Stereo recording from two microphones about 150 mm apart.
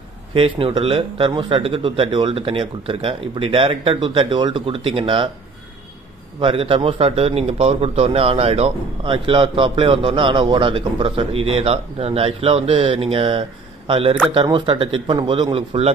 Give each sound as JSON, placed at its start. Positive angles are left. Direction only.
{"t": 0.3, "sound": "a man's voice", "side_deg": -40}
{"t": 6.4, "sound": "a man's voice", "side_deg": -40}